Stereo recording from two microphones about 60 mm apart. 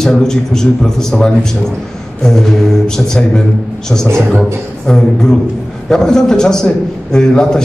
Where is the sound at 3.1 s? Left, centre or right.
Centre.